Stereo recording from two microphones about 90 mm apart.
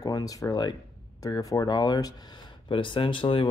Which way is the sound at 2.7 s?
70° left (ahead or behind).